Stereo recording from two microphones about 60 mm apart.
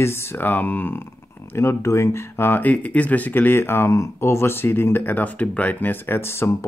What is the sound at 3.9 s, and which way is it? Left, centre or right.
Speech, left.